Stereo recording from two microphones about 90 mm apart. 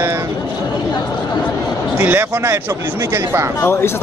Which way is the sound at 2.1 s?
20° right (ahead or behind).